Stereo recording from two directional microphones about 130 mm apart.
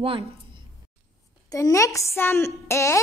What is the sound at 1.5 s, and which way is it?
A woman's voice, 25° left (ahead or behind).